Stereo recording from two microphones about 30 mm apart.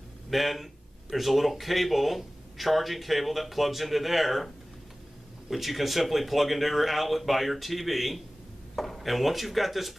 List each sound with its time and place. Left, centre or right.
0.3 s speech: centre
5.5 s speech: centre